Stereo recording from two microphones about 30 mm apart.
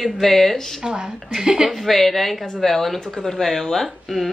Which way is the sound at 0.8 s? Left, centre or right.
Centre.